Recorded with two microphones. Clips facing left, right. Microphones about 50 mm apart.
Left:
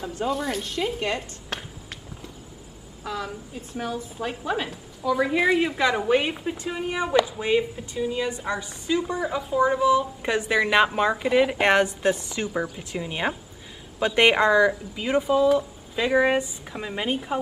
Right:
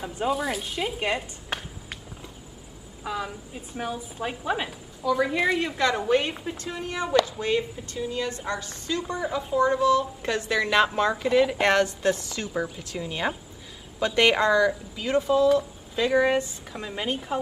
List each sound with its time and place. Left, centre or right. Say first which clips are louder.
0.0 s a woman's voice: even; centre
0.4 s a sound: left 1 dB; centre
3.0 s a woman's voice: even; centre
5.0 s a woman's voice: left 2 dB; centre